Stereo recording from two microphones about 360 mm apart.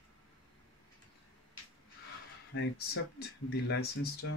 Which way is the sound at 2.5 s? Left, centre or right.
Left.